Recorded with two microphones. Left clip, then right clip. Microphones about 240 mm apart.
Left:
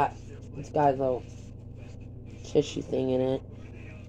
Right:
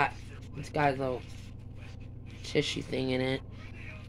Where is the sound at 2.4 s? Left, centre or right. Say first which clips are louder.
Left 4 dB; right.